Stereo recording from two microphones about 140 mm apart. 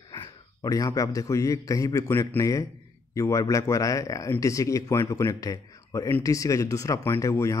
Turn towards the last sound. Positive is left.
turn(degrees=20)  # may be behind; listen again after turning